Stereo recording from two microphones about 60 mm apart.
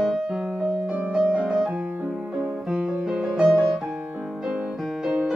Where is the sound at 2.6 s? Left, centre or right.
Centre.